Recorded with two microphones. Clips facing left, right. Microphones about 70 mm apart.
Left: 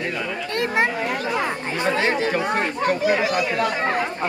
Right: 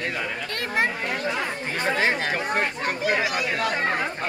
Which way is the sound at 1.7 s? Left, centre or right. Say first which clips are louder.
Left 3 dB; centre.